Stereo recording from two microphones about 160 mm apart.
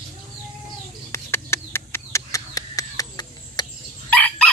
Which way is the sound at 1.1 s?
15° left (ahead or behind).